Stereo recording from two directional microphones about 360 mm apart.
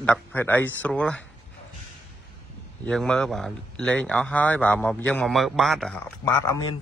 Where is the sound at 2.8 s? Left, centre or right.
Centre.